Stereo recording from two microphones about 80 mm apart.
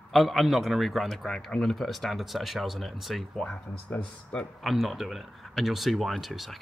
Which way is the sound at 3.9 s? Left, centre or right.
Left.